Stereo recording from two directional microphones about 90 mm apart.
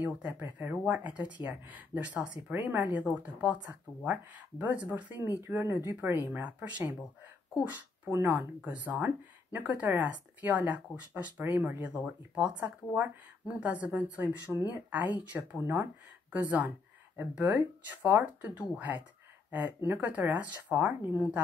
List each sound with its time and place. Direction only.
0.3 s speech: 25° right (ahead or behind)